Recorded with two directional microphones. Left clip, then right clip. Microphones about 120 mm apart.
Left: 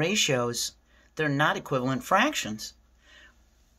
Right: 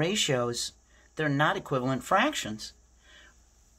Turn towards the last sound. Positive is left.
turn(degrees=0)  # may be behind; listen again after turning